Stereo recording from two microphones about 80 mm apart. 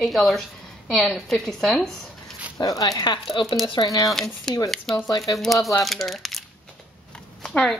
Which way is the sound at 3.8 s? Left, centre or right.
Left.